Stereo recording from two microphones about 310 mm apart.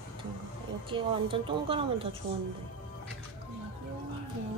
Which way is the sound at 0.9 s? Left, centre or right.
Centre.